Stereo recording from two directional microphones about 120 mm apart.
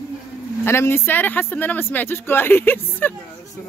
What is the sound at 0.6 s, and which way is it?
Speech, 20° left (ahead or behind).